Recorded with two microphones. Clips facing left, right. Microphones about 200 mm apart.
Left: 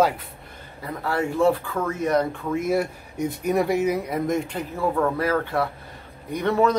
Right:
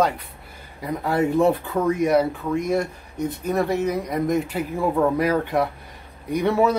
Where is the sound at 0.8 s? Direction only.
20° right (ahead or behind).